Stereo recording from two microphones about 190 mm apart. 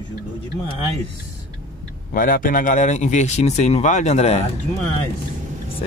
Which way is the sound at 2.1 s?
45° left (ahead or behind).